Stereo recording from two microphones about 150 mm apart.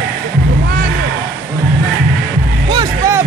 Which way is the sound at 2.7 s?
30° right (ahead or behind).